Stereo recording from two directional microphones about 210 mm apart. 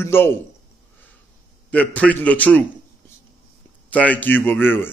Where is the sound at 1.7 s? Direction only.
5° left (ahead or behind).